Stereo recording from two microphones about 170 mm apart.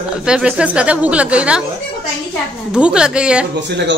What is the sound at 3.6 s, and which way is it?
Speech, 90° right.